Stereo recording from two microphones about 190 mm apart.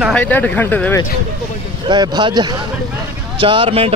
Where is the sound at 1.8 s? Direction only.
20° right (ahead or behind).